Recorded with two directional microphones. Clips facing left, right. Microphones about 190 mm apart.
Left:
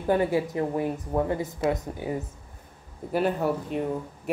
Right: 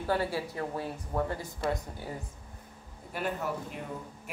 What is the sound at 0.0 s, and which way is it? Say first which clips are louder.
Speech: left 7 dB; 20° left (ahead or behind).